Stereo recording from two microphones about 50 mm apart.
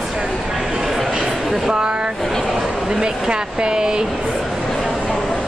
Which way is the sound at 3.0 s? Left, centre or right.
Centre.